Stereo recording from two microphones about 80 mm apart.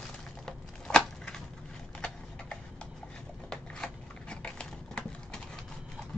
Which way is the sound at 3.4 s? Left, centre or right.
Centre.